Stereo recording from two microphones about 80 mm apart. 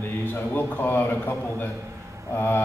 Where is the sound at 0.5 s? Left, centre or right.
Left.